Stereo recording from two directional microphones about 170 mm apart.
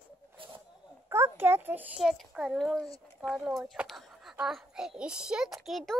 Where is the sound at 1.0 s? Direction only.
15° right (ahead or behind).